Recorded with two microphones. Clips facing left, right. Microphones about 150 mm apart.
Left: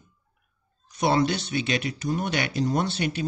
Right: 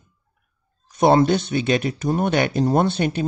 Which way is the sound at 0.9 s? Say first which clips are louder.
Right 7 dB; 50° right (ahead or behind).